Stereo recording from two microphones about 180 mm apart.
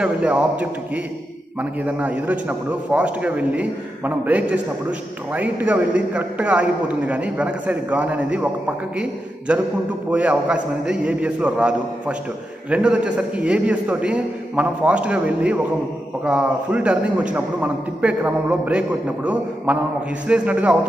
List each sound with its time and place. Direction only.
0.0 s a man's voice: 5° right (ahead or behind)